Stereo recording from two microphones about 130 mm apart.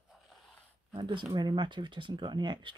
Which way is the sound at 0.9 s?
35° right (ahead or behind).